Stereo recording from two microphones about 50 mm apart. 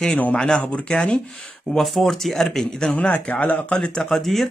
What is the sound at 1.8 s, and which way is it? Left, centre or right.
Speech, centre.